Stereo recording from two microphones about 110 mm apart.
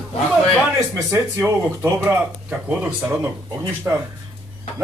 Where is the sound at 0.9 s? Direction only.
25° right (ahead or behind).